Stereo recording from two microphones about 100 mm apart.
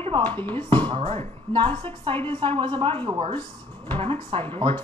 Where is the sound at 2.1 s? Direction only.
20° left (ahead or behind).